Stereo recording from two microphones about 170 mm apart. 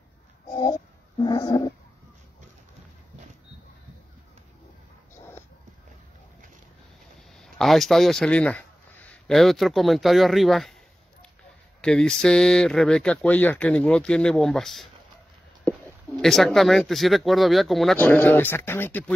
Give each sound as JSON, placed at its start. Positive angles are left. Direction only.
{"t": 0.5, "sound": "a sound", "side_deg": 25}
{"t": 1.2, "sound": "dog", "side_deg": 25}
{"t": 7.3, "sound": "speech", "side_deg": 0}
{"t": 11.8, "sound": "speech", "side_deg": 5}
{"t": 15.7, "sound": "a sound", "side_deg": 10}
{"t": 16.2, "sound": "speech", "side_deg": 0}